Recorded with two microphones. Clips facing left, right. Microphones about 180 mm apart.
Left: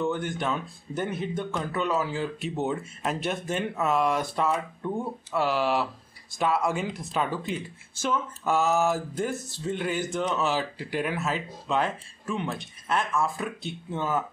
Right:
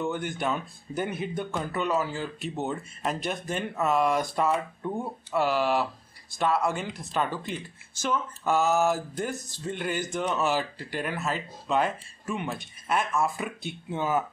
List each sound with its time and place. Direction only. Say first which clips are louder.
0.0 s speech: left 1 dB; 5° right (ahead or behind)